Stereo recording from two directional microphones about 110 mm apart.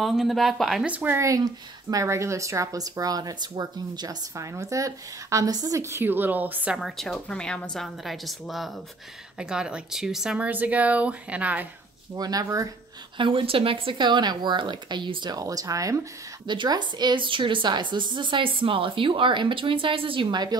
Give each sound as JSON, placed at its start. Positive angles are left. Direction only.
{"t": 0.0, "sound": "a woman's voice", "side_deg": 0}
{"t": 0.8, "sound": "speech", "side_deg": -15}
{"t": 1.2, "sound": "speech", "side_deg": -35}
{"t": 6.8, "sound": "a woman's voice", "side_deg": 5}
{"t": 12.2, "sound": "speech", "side_deg": -35}
{"t": 13.2, "sound": "a woman's voice", "side_deg": -55}
{"t": 16.4, "sound": "a woman's voice", "side_deg": -40}